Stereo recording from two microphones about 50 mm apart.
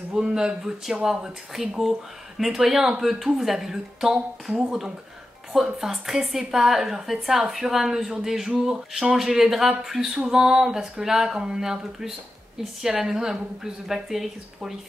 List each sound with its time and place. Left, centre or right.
0.1 s speech: centre